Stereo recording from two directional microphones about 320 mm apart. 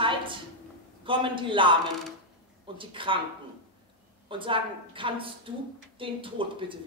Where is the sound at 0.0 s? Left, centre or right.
Centre.